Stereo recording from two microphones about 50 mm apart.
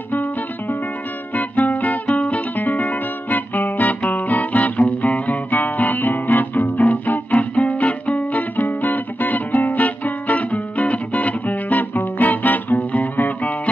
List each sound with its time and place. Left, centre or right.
1.3 s music: left